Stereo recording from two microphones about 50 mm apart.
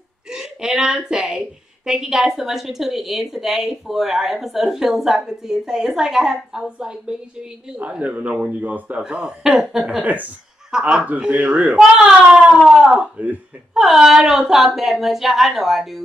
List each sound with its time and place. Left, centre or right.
0.3 s a woman's voice: centre
8.5 s speech: right
9.0 s a woman's voice: centre
10.7 s a woman's voice: centre
11.1 s speech: right
11.7 s a woman's voice: centre
13.7 s a woman's voice: centre